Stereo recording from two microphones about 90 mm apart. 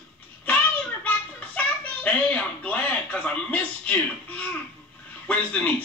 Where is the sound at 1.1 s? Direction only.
15° left (ahead or behind).